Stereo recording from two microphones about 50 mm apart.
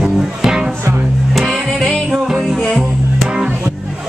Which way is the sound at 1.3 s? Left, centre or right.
Centre.